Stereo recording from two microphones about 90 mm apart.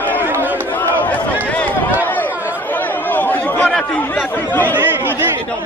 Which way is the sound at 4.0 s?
20° left (ahead or behind).